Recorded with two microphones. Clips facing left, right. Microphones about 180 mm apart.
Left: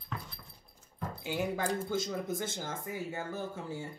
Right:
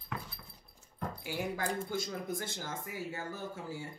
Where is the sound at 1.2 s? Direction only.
20° left (ahead or behind).